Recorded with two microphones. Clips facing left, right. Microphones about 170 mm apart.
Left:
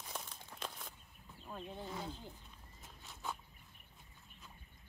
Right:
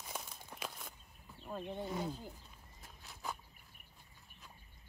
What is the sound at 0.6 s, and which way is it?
Walk, centre (ahead or behind).